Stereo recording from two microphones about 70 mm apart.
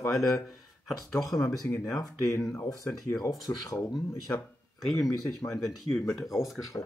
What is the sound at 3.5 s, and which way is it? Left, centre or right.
Speech, left.